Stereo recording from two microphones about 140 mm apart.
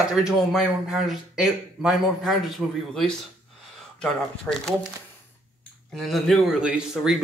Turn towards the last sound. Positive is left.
turn(degrees=-5)  # may be behind; listen again after turning